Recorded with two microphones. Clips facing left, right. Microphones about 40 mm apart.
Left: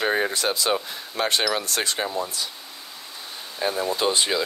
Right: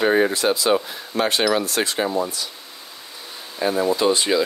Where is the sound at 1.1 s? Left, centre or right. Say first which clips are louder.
Right 3 dB; right.